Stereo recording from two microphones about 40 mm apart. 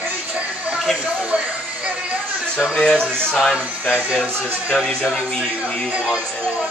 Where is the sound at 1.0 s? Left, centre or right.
Right.